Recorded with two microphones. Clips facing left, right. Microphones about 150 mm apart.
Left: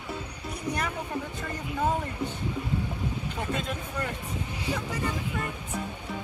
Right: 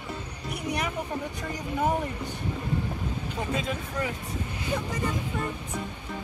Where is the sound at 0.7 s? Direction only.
10° right (ahead or behind).